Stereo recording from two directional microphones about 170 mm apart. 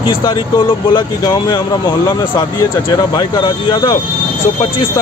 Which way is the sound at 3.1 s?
25° left (ahead or behind).